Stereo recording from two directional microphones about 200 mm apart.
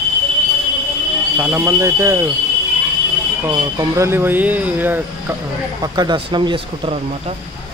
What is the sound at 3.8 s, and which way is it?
Speech, 15° right (ahead or behind).